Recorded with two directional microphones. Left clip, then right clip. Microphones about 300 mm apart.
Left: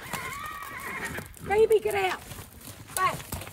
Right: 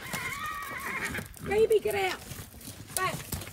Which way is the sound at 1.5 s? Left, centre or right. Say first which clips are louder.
Left 3 dB; centre.